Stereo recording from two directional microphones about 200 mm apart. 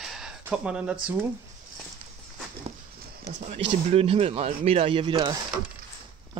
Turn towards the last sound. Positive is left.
turn(degrees=-25)  # may be behind; listen again after turning